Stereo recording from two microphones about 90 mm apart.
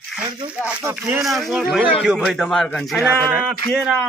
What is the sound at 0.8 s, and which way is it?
Speech, 35° right (ahead or behind).